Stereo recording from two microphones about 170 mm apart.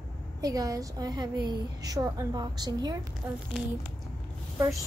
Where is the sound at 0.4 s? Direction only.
20° right (ahead or behind).